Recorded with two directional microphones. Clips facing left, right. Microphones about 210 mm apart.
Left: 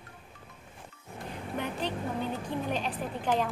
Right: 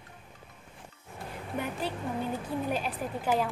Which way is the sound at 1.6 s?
5° right (ahead or behind).